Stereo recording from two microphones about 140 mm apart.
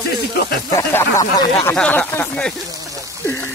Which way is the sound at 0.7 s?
20° left (ahead or behind).